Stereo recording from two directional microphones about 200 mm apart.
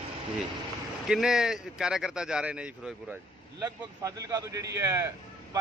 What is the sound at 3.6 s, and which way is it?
A man's voice, 15° right (ahead or behind).